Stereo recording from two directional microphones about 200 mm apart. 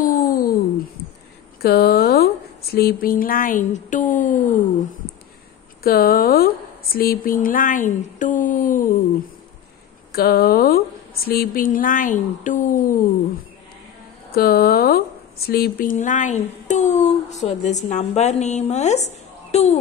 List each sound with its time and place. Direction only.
0.0 s a sound: 45° left (ahead or behind)
1.6 s speech: 50° left (ahead or behind)
5.9 s speech: 45° left (ahead or behind)
10.1 s speech: 50° left (ahead or behind)
14.3 s speech: 50° left (ahead or behind); by 19.8 s 35° left (ahead or behind)